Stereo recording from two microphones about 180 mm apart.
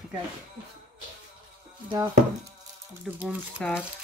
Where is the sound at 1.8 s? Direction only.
25° right (ahead or behind).